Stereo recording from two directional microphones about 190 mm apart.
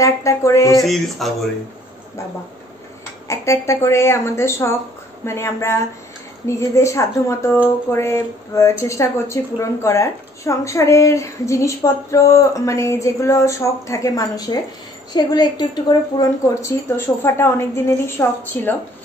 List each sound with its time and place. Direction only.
0.0 s a woman's voice: 15° left (ahead or behind)
0.8 s speech: centre (ahead or behind)
3.3 s a woman's voice: 15° left (ahead or behind)